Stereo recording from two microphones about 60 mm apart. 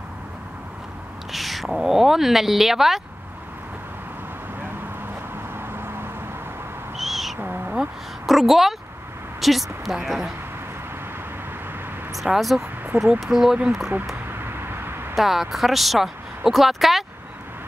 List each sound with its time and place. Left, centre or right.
1.3 s a woman's voice: centre
5.5 s vehicle: right
7.0 s owl: centre
7.3 s owl: right
7.7 s a sound: centre
9.4 s a woman's voice: centre
12.2 s a woman's voice: centre
14.4 s a sound: right
15.1 s a woman's voice: centre